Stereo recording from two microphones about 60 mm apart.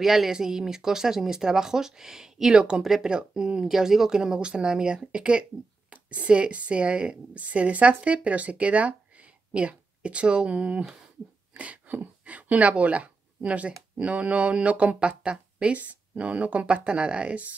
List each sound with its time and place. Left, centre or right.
0.0 s speech: centre